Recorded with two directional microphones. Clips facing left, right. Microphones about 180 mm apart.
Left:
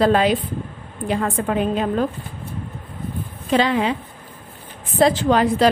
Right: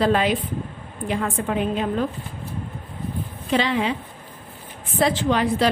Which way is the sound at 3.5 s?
40° left (ahead or behind).